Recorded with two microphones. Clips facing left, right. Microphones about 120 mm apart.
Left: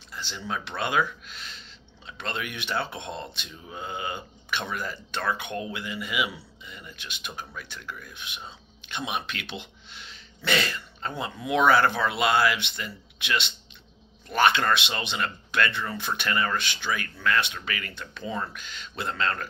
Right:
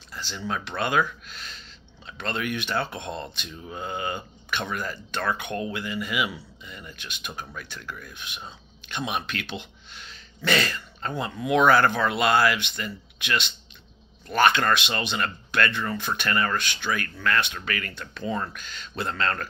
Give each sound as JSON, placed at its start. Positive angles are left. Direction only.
{"t": 0.1, "sound": "a man's voice", "side_deg": 20}
{"t": 11.4, "sound": "a man's voice", "side_deg": 25}